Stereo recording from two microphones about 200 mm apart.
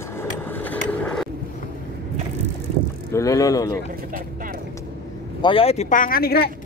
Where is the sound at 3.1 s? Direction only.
15° left (ahead or behind).